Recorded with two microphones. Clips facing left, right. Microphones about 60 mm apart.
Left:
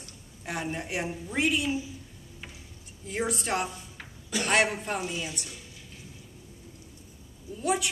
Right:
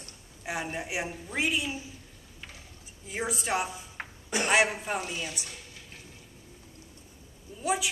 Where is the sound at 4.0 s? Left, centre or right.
Right.